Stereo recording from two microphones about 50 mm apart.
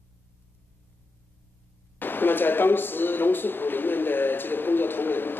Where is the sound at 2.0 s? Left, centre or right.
Left.